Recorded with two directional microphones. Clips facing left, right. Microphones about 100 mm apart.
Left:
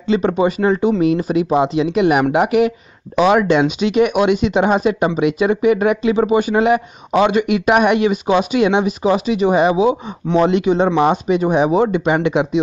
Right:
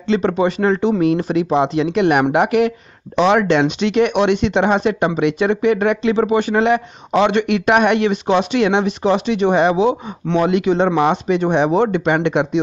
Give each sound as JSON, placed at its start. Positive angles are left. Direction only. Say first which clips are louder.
{"t": 0.0, "sound": "speech", "louder": "left 1 dB", "side_deg": 10}
{"t": 10.4, "sound": "speech", "louder": "left 1 dB", "side_deg": 25}
{"t": 11.0, "sound": "speech", "louder": "left 1 dB", "side_deg": 10}